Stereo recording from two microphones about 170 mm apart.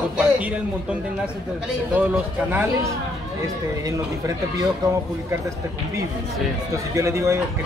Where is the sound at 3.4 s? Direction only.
20° right (ahead or behind).